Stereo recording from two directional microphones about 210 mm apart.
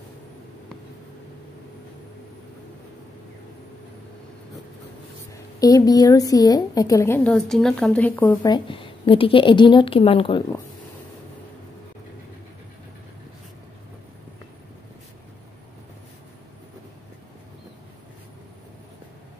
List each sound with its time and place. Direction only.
5.6 s a woman's voice: 15° left (ahead or behind)
7.3 s speech: centre (ahead or behind)
8.3 s a woman's voice: 20° left (ahead or behind)